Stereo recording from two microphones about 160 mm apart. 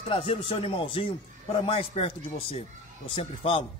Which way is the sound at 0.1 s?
35° left (ahead or behind).